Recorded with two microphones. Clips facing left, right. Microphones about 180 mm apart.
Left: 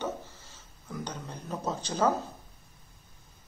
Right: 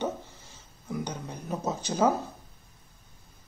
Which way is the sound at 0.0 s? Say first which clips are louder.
Right 3 dB; 15° right (ahead or behind).